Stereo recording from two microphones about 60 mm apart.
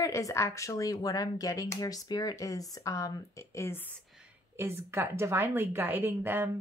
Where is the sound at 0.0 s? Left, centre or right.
Left.